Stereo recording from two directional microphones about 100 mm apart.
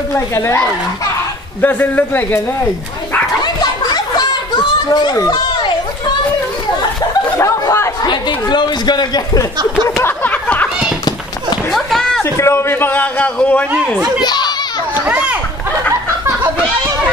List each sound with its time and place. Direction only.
0.1 s a man's voice: 25° left (ahead or behind)
3.8 s a sound: 40° left (ahead or behind)
4.8 s speech: 35° left (ahead or behind)
7.3 s chatter: 30° left (ahead or behind)
8.0 s speech: 45° left (ahead or behind)
9.8 s a man's voice: 30° left (ahead or behind)
10.2 s a sound: 15° left (ahead or behind)
11.7 s speech: 5° left (ahead or behind)
12.2 s a man's voice: 25° left (ahead or behind)
14.2 s a child's voice: 45° left (ahead or behind)
15.0 s speech: 15° right (ahead or behind)